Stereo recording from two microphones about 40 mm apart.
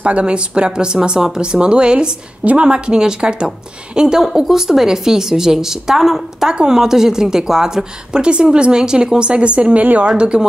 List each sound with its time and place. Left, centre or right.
0.0 s a woman's voice: right; by 6.5 s centre
6.5 s a woman's voice: centre